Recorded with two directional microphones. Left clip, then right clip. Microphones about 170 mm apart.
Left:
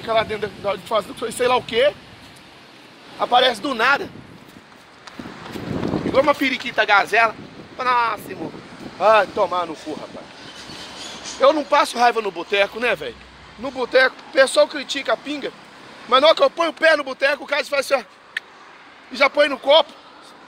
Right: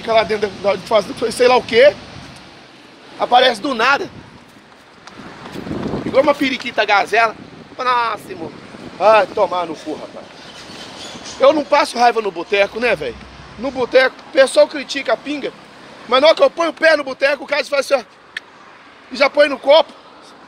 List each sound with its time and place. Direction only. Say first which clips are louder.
0.0 s speech: right 5 dB; 15° right (ahead or behind)
3.2 s speech: right 4 dB; 15° right (ahead or behind)
6.1 s speech: right 3 dB; centre (ahead or behind)
9.0 s speech: right 3 dB; 10° right (ahead or behind)
11.3 s speech: right 3 dB; 5° right (ahead or behind)
19.6 s speech: right 3 dB; 15° right (ahead or behind)